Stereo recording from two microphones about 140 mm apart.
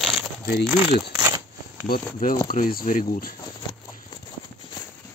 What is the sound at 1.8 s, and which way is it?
Speech, 85° left.